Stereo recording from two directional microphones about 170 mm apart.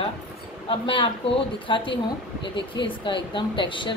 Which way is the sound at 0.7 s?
30° left (ahead or behind).